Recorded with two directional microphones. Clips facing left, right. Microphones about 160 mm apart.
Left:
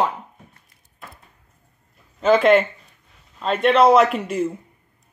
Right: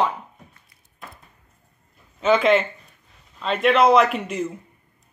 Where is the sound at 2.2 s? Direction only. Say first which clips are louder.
Left 3 dB; centre (ahead or behind).